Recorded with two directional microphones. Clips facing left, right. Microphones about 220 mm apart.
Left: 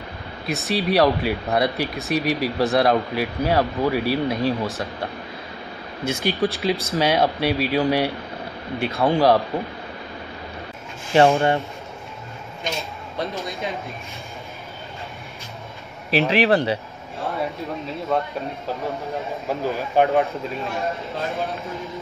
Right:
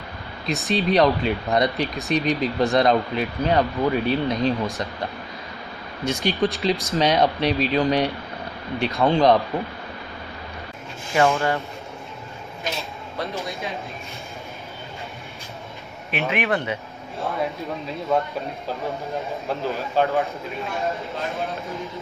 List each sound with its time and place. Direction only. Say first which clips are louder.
0.5 s speech: right 1 dB; 5° left (ahead or behind)
6.2 s speech: even; 5° left (ahead or behind)
11.1 s speech: left 4 dB; 30° left (ahead or behind)
16.1 s speech: left 6 dB; 30° left (ahead or behind)
17.3 s speech: even; centre (ahead or behind)
19.4 s speech: left 2 dB; 15° left (ahead or behind)
20.6 s speech: right 2 dB; centre (ahead or behind)